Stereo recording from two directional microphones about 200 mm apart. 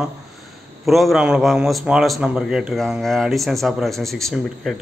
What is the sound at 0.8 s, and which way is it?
Speech, centre (ahead or behind).